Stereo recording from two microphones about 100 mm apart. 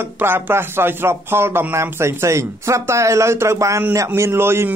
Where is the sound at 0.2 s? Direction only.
20° right (ahead or behind).